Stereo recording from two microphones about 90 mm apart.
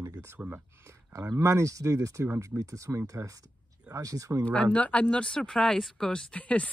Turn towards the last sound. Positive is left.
turn(degrees=15)  # may be behind; listen again after turning